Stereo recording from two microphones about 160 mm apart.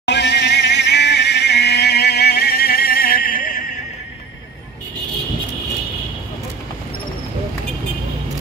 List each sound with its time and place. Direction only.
0.0 s vehicle: 90° left; by 3.6 s 60° left (ahead or behind)